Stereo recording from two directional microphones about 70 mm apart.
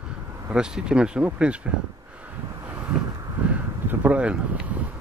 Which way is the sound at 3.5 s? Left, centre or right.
Right.